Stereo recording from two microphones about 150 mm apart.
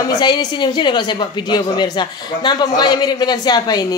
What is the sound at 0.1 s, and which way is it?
A woman's voice, 30° left (ahead or behind).